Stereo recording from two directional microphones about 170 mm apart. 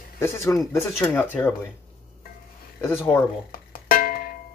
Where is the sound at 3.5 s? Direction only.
55° left (ahead or behind).